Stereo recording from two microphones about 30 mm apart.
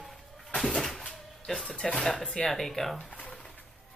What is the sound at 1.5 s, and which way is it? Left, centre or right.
Speech, centre.